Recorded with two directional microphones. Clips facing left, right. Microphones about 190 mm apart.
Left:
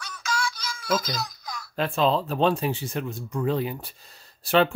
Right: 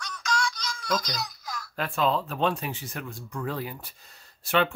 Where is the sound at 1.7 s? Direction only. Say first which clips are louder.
Left 3 dB; 25° left (ahead or behind).